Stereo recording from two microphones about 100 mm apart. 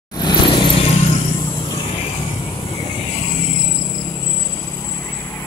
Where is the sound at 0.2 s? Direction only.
50° left (ahead or behind).